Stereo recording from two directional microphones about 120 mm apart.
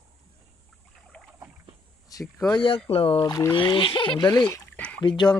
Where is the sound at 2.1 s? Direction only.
30° left (ahead or behind).